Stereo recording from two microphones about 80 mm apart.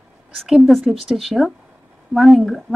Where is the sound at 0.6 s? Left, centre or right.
Centre.